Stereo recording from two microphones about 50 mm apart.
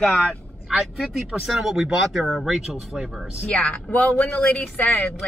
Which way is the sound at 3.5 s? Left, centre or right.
Left.